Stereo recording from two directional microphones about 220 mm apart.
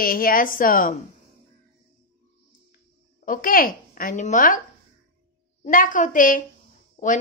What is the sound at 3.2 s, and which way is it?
A woman's voice, 40° left (ahead or behind).